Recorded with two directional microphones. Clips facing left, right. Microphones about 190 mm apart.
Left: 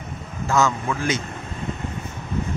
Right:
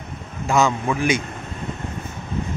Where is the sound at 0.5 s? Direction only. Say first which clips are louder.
Right 2 dB; 15° right (ahead or behind).